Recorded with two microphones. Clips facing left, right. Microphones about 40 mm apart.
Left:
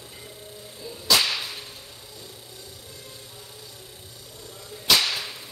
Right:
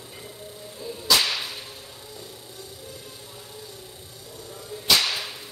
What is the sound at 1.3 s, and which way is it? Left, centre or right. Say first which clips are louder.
Whip: even; centre.